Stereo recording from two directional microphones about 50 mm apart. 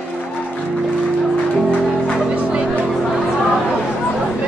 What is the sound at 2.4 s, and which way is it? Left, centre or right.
Music, centre.